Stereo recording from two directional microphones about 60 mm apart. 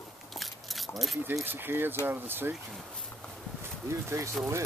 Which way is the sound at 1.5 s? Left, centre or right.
Right.